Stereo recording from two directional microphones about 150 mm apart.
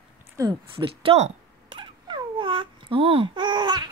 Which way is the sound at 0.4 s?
30° right (ahead or behind).